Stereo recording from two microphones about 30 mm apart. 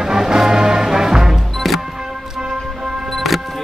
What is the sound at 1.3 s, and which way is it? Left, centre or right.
Music, centre.